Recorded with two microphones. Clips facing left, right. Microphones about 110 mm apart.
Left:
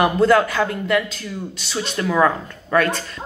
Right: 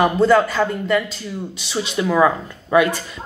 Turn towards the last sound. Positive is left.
turn(degrees=-10)  # may be behind; listen again after turning